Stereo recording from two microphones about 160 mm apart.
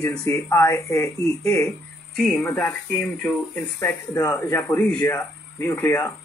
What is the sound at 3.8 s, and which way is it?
Speech, 15° left (ahead or behind).